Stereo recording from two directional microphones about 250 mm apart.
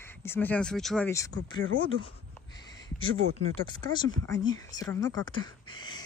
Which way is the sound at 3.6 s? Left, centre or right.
Centre.